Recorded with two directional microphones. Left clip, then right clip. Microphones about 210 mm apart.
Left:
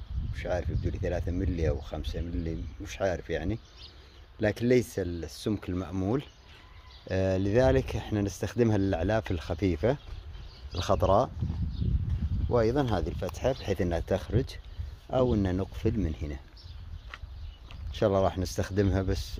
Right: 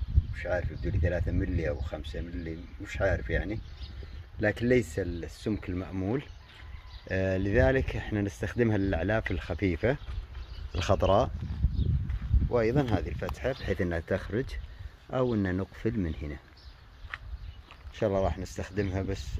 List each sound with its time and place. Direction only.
0.3 s speech: 10° left (ahead or behind)
12.4 s speech: centre (ahead or behind)
17.9 s speech: 15° left (ahead or behind)